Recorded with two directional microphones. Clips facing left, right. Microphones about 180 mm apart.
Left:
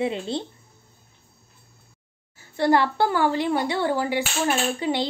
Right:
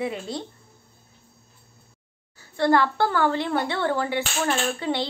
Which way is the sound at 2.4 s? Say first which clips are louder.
Even; 15° left (ahead or behind).